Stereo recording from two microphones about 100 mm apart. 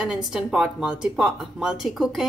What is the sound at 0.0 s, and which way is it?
A woman's voice, 5° right (ahead or behind).